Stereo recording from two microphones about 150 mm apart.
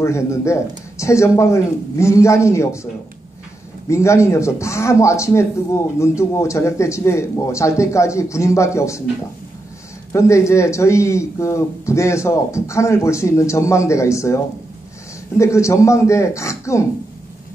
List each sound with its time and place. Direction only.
0.0 s speech: 20° left (ahead or behind)
3.9 s speech: 20° left (ahead or behind)
10.1 s speech: 20° left (ahead or behind)